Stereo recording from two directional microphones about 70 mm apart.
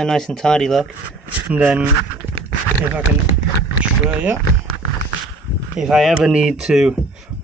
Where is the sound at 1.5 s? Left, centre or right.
Centre.